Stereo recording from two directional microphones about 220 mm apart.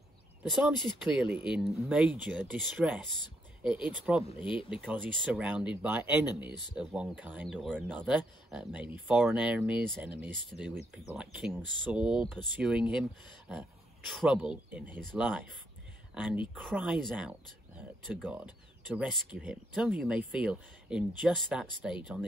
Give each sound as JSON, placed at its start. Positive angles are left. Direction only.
{"t": 0.4, "sound": "speech", "side_deg": -5}
{"t": 4.4, "sound": "speech", "side_deg": 20}
{"t": 4.6, "sound": "speech", "side_deg": -5}